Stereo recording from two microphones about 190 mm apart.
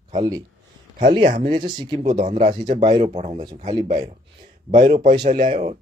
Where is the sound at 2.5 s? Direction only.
25° right (ahead or behind).